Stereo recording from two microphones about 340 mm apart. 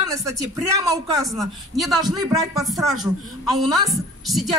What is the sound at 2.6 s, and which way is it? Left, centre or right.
Speech, centre.